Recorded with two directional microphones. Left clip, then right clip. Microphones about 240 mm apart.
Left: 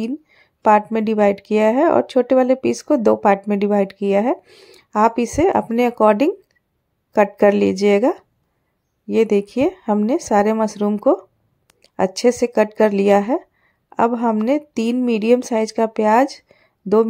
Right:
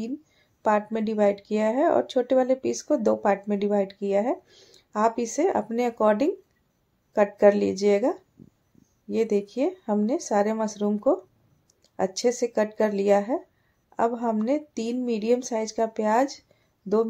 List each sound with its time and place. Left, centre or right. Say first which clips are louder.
0.0 s a woman's voice: left 8 dB; left